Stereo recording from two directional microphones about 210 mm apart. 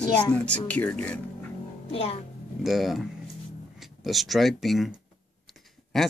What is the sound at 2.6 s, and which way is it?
Speech, centre (ahead or behind).